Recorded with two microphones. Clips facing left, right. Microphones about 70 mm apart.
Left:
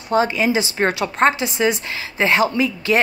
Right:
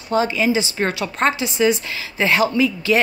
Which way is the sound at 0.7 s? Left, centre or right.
Left.